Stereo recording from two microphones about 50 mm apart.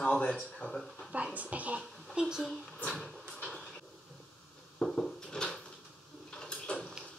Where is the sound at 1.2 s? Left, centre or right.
Right.